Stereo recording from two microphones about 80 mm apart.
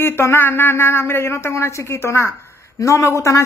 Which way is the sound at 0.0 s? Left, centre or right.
Left.